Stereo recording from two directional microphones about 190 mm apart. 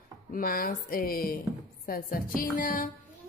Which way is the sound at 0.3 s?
50° left (ahead or behind).